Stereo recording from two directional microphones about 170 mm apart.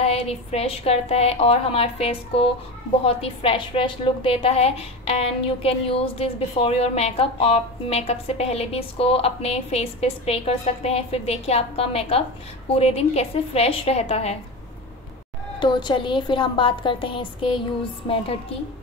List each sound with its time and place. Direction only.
0.0 s a woman's voice: 35° left (ahead or behind)
15.6 s a woman's voice: 30° left (ahead or behind)